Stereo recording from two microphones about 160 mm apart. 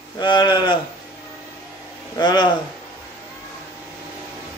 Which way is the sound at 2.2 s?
25° left (ahead or behind).